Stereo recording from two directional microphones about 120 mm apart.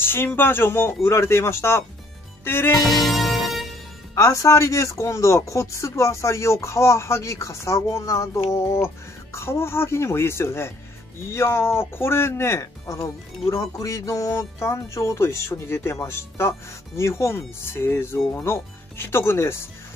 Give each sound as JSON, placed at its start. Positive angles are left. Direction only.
{"t": 0.0, "sound": "speech", "side_deg": 20}
{"t": 2.8, "sound": "music", "side_deg": 0}
{"t": 4.1, "sound": "speech", "side_deg": 25}